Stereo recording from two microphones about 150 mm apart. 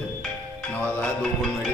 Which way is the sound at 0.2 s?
5° left (ahead or behind).